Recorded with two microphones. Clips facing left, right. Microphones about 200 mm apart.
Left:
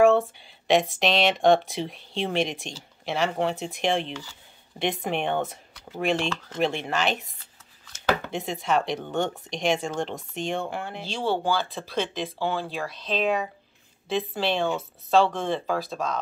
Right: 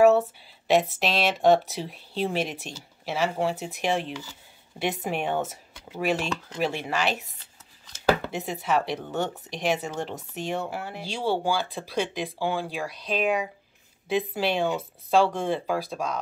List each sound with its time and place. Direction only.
0.9 s speech: 5° right (ahead or behind)
8.3 s speech: 5° right (ahead or behind)